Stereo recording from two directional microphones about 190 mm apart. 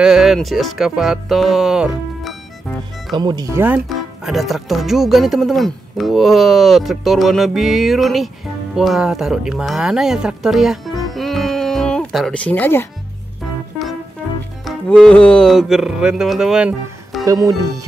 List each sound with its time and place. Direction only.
0.0 s speech: 5° right (ahead or behind)
3.1 s speech: 20° right (ahead or behind); by 12.8 s 10° left (ahead or behind)
14.6 s music: centre (ahead or behind)
17.2 s speech: 20° right (ahead or behind)